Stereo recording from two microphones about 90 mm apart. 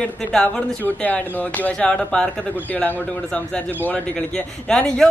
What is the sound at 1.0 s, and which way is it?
Speech, 15° left (ahead or behind).